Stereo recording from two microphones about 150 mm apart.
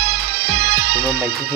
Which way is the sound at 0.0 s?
90° right.